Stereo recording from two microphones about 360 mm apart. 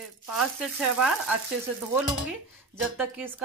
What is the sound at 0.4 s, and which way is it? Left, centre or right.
Speech, centre.